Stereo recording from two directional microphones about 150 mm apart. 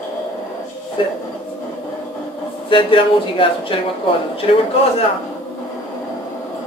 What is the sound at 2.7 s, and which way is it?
Speech, 35° left (ahead or behind).